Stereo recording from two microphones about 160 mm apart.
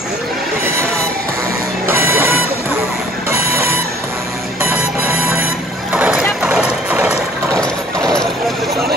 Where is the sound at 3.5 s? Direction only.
15° right (ahead or behind).